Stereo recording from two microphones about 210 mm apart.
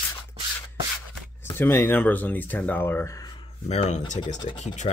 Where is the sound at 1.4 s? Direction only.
10° left (ahead or behind).